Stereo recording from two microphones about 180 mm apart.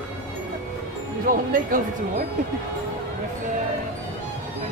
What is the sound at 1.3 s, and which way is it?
Speech, 50° right (ahead or behind).